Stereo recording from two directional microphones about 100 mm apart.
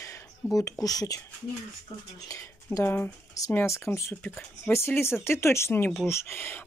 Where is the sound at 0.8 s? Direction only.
40° left (ahead or behind).